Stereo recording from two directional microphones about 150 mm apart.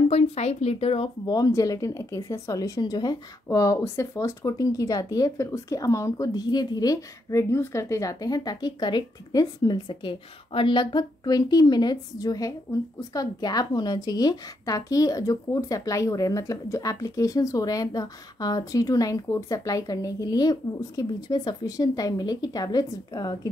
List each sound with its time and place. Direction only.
0.1 s speech: 45° left (ahead or behind)
1.3 s speech: 25° left (ahead or behind)